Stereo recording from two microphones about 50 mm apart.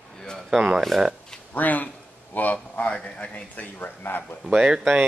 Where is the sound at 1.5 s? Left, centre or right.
Left.